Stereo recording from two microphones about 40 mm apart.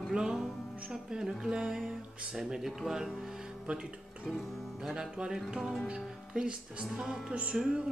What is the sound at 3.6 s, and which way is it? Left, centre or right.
Music, right.